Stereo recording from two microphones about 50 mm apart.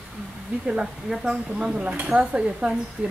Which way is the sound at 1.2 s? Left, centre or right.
Centre.